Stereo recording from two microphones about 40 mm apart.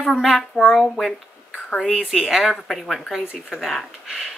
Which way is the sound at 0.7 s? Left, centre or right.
Centre.